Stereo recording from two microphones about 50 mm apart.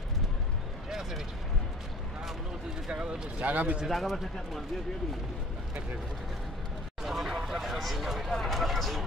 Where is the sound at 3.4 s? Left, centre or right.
Right.